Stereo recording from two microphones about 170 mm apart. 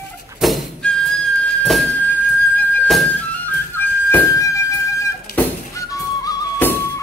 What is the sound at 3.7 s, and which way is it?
Music, 15° left (ahead or behind).